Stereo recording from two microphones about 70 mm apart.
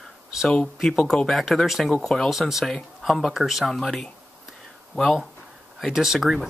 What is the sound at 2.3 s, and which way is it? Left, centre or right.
Speech, centre.